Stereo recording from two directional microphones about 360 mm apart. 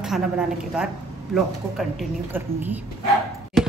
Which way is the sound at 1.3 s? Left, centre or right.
Centre.